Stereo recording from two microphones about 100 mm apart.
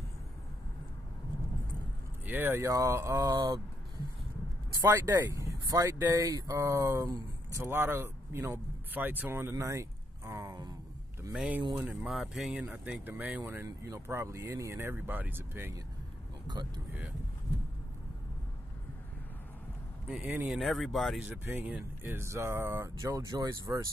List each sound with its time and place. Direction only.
2.2 s speech: 20° right (ahead or behind)
2.7 s speech: 30° right (ahead or behind)
4.8 s speech: 25° right (ahead or behind)
10.5 s speech: 40° right (ahead or behind)
11.3 s speech: 10° right (ahead or behind)
12.1 s speech: centre (ahead or behind)
12.5 s speech: 15° right (ahead or behind)
16.4 s speech: 45° right (ahead or behind)
20.1 s speech: 5° right (ahead or behind)
21.5 s speech: 15° right (ahead or behind)
22.0 s speech: 25° right (ahead or behind)